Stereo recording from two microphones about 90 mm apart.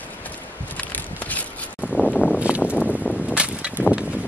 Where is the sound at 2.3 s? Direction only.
15° right (ahead or behind).